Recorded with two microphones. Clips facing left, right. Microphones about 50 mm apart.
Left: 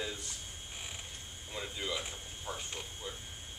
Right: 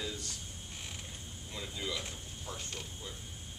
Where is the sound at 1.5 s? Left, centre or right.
Centre.